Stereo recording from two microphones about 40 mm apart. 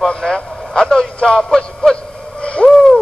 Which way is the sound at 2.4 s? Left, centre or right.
Left.